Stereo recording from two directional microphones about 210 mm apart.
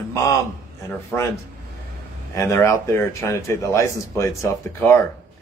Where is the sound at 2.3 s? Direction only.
15° left (ahead or behind).